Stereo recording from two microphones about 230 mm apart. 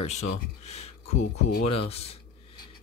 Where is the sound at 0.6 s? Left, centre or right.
Left.